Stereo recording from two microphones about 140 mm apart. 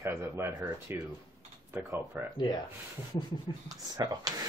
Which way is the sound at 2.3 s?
30° left (ahead or behind).